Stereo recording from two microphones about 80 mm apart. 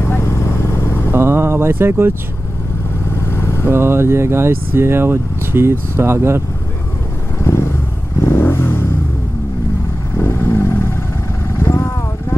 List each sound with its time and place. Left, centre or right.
0.1 s vehicle: left
1.1 s a sound: right
3.3 s vehicle: left
3.6 s speech: right
7.4 s vehicle: left
10.1 s vehicle: left